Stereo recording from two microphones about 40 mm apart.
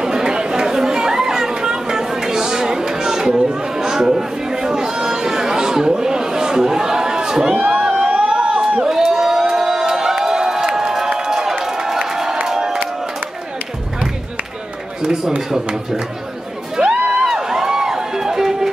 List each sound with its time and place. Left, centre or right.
0.0 s chatter: centre
7.5 s speech: right
8.1 s crowd: right
15.3 s speech: centre
16.9 s a sound: right
17.3 s crowd: centre